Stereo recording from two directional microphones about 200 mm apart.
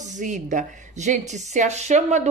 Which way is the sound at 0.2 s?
40° right (ahead or behind).